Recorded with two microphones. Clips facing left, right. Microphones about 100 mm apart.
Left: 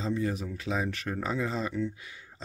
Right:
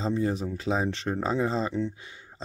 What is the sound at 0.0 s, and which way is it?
Speech, 30° right (ahead or behind).